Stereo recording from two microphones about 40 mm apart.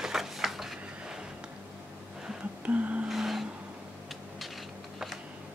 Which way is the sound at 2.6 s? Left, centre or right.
Right.